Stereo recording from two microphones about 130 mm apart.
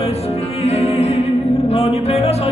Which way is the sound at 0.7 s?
50° left (ahead or behind).